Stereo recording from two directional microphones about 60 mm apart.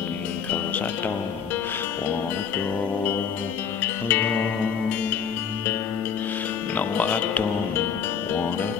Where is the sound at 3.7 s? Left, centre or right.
Left.